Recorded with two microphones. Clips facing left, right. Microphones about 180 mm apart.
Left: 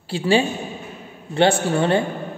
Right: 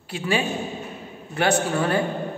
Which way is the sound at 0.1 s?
30° left (ahead or behind).